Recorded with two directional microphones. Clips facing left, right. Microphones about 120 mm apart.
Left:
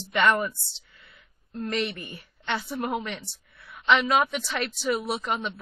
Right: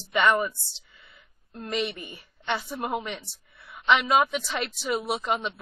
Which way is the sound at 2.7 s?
5° right (ahead or behind).